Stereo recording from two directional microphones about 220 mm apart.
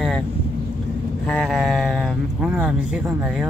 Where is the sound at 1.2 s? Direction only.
5° left (ahead or behind).